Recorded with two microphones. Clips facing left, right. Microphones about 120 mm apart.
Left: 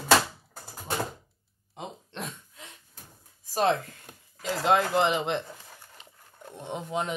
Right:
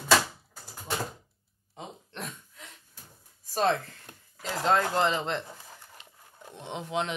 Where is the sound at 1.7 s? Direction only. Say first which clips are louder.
Left 3 dB; 20° left (ahead or behind).